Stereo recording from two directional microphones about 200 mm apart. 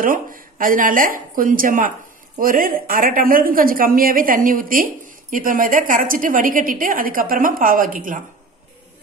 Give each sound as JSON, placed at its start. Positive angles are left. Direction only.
{"t": 0.0, "sound": "a woman's voice", "side_deg": -45}